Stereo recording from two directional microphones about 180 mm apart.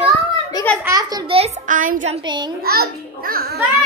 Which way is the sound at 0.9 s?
20° right (ahead or behind).